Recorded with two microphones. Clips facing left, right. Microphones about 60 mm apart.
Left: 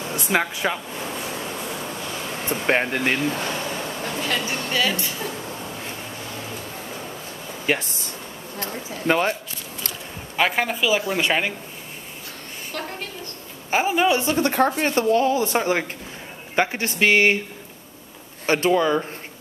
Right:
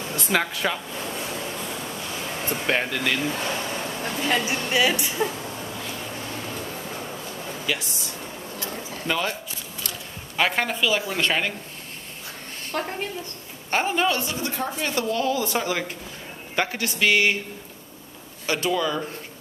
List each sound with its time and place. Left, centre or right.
0.0 s speech: centre
1.2 s vehicle: centre
2.6 s speech: left
4.0 s speech: centre
7.6 s a sound: left
10.3 s speech: centre
12.7 s speech: centre
13.7 s speech: centre
14.4 s a woman's voice: left
14.8 s speech: left
18.5 s speech: left